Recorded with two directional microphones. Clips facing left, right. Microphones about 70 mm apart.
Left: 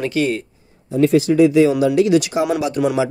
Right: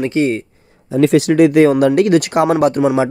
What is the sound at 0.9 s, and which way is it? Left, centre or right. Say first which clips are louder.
Speech: right 2 dB; right.